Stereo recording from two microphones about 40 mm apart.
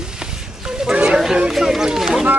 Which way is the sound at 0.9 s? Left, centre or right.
Right.